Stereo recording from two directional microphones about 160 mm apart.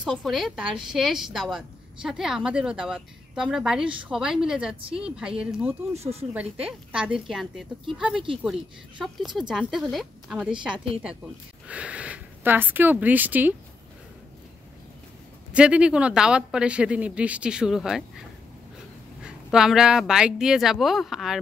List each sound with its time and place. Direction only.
0.0 s a woman's voice: centre (ahead or behind)
5.9 s speech: 40° right (ahead or behind)
6.3 s a woman's voice: 10° right (ahead or behind)
15.5 s speech: 5° right (ahead or behind)
19.2 s a woman's voice: 5° right (ahead or behind)